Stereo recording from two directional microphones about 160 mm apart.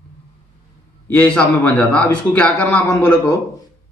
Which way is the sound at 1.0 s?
10° left (ahead or behind).